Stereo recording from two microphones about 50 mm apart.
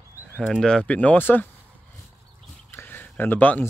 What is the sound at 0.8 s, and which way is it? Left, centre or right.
Speech, left.